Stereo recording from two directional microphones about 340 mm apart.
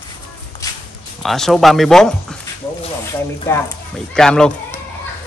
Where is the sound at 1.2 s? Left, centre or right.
Centre.